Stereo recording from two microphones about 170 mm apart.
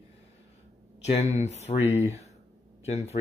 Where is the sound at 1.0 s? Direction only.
40° left (ahead or behind).